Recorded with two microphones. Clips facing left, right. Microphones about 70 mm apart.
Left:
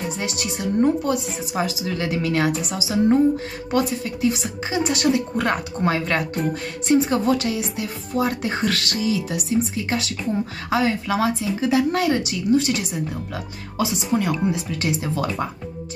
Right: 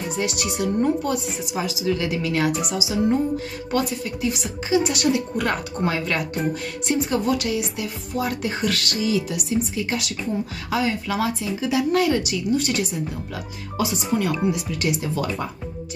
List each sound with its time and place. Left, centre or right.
0.2 s speech: left